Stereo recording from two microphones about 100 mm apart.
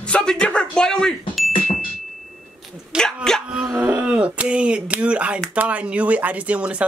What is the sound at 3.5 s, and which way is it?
Speech, 10° right (ahead or behind).